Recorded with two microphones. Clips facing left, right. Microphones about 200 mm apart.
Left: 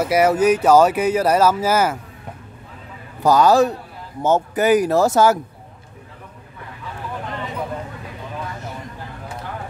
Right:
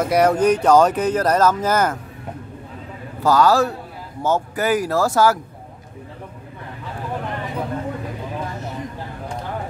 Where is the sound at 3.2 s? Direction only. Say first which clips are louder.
Left 2 dB; 20° left (ahead or behind).